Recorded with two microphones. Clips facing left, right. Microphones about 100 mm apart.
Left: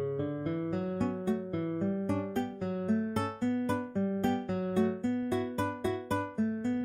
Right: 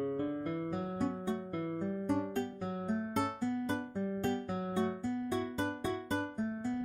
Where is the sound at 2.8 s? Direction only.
10° right (ahead or behind).